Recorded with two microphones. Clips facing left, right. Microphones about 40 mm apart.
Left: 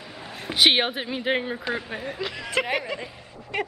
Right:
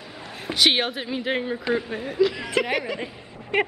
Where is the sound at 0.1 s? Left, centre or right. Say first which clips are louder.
Right 2 dB; centre.